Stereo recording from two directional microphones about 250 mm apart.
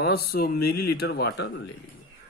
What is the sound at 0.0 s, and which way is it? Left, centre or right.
Speech, left.